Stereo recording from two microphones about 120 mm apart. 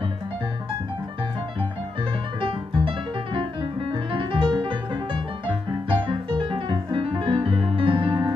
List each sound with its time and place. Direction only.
2.4 s music: 45° right (ahead or behind)
3.9 s music: 45° right (ahead or behind)